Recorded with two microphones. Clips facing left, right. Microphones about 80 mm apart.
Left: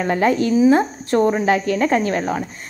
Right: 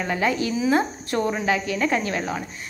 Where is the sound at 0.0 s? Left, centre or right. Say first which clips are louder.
Left 6 dB; left.